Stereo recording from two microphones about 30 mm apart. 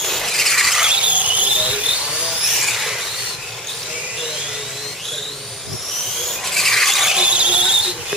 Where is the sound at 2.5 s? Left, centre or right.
Centre.